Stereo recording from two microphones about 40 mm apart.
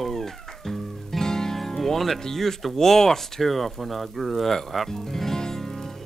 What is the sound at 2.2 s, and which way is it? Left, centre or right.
Speech, centre.